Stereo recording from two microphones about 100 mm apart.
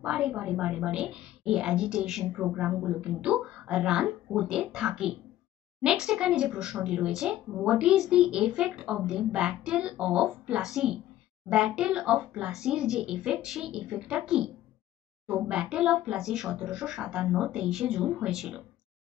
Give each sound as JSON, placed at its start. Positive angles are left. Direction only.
{"t": 0.0, "sound": "speech", "side_deg": -10}